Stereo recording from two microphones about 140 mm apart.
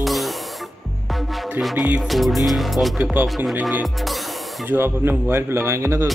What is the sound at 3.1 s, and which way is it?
Speech, 10° right (ahead or behind).